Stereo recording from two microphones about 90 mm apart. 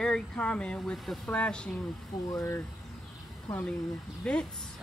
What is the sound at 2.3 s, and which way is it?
Speech, 35° left (ahead or behind).